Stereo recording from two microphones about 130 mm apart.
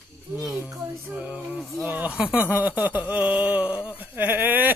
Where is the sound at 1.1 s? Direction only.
10° right (ahead or behind).